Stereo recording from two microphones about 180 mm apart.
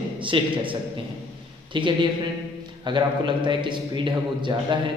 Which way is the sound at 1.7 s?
25° right (ahead or behind).